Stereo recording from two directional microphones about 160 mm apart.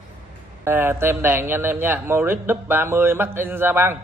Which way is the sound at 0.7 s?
15° right (ahead or behind).